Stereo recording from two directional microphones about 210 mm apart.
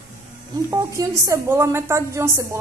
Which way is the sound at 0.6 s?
15° right (ahead or behind).